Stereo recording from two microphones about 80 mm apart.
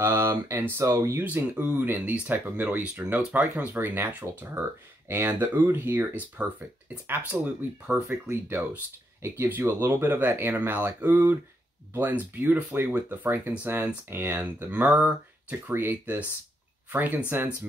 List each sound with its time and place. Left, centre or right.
0.0 s speech: right
1.2 s speech: right
2.8 s speech: centre
3.7 s speech: right
14.4 s speech: centre
15.7 s speech: right